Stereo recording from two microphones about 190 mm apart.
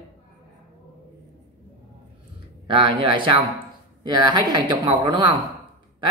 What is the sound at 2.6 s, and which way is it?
Speech, 25° right (ahead or behind).